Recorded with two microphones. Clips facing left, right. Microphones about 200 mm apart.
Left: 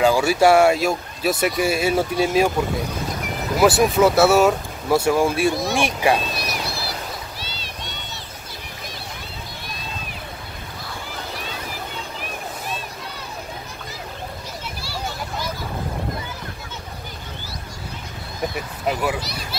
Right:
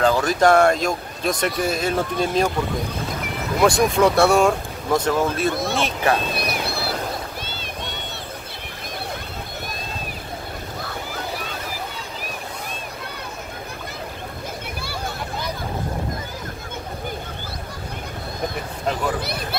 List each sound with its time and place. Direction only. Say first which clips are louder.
0.0 s speech: left 1 dB; 10° left (ahead or behind)
3.5 s speech: left 1 dB; 5° left (ahead or behind)
6.3 s a sound: right 3 dB; 55° right (ahead or behind)
7.4 s boat: right 3 dB; 50° right (ahead or behind)
14.8 s vehicle: left 1 dB; 55° right (ahead or behind)